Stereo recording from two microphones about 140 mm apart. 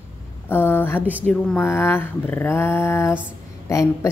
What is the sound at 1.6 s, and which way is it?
Speech, 20° left (ahead or behind).